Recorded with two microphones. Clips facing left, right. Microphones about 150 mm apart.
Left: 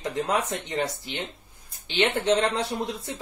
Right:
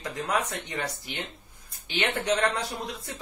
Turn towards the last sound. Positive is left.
turn(degrees=25)  # may be behind; listen again after turning